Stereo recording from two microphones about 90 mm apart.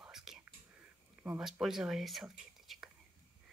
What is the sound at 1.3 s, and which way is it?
Speech, 5° right (ahead or behind).